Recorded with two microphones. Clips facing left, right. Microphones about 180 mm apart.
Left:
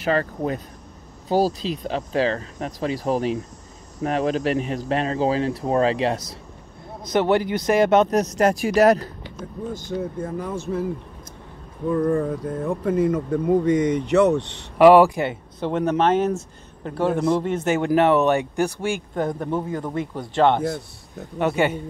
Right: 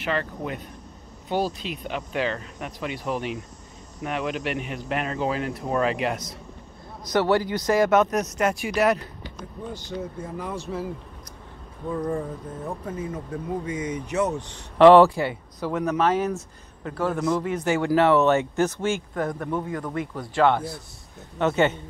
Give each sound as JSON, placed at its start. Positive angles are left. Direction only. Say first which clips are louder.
{"t": 0.0, "sound": "speech", "louder": "left 6 dB", "side_deg": 40}
{"t": 7.1, "sound": "speech", "louder": "left 2 dB", "side_deg": 20}
{"t": 12.1, "sound": "speech", "louder": "left 7 dB", "side_deg": 65}
{"t": 13.7, "sound": "speech", "louder": "left 8 dB", "side_deg": 70}
{"t": 14.8, "sound": "a man's voice", "louder": "left 1 dB", "side_deg": 10}
{"t": 19.1, "sound": "a man's voice", "louder": "left 3 dB", "side_deg": 25}
{"t": 21.4, "sound": "speech", "louder": "left 1 dB", "side_deg": 10}